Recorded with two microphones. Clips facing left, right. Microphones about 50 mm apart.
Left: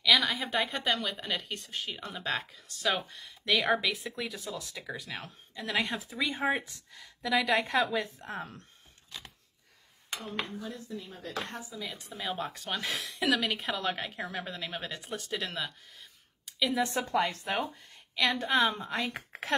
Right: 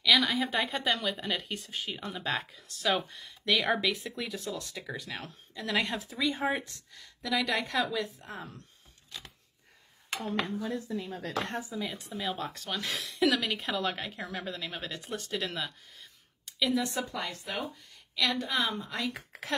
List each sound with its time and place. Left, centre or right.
0.0 s a woman's voice: centre
7.6 s a woman's voice: left
8.2 s speech: left
10.2 s speech: right
11.7 s a woman's voice: centre
12.0 s speech: centre
12.6 s a woman's voice: centre
12.9 s speech: centre
16.7 s speech: left
18.1 s a woman's voice: centre
18.4 s speech: left